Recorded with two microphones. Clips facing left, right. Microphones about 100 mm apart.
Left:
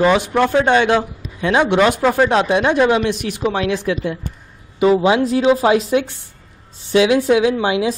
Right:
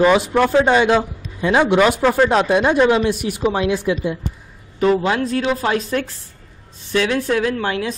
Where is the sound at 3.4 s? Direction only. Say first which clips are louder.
Even; 10° right (ahead or behind).